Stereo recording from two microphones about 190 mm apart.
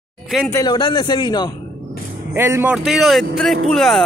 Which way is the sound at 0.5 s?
20° left (ahead or behind).